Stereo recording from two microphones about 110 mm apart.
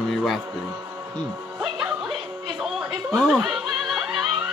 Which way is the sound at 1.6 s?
5° right (ahead or behind).